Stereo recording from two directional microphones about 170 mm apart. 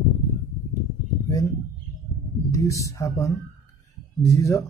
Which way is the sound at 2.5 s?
20° left (ahead or behind).